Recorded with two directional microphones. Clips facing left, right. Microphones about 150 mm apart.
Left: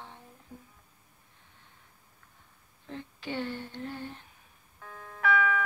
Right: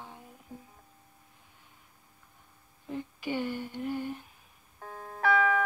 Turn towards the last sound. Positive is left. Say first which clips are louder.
# right 2 dB
turn(degrees=-40)  # may be behind; listen again after turning